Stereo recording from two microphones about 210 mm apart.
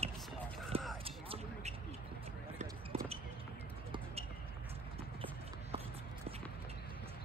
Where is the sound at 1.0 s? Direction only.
25° right (ahead or behind).